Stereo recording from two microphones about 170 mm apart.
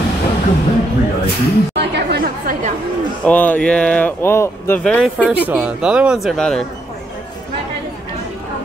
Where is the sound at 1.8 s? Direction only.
75° right (ahead or behind).